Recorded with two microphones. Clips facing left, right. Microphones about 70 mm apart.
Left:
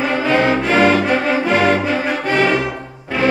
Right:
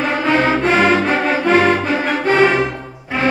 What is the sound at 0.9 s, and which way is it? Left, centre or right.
Music, right.